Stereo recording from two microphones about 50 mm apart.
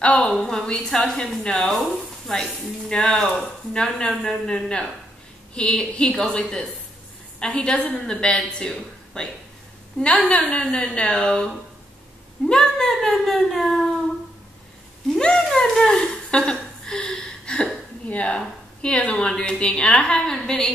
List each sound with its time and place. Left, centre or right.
0.0 s speech: left
4.1 s speech: centre
4.5 s speech: centre
15.1 s speech: centre
16.0 s a sound: centre
18.0 s speech: left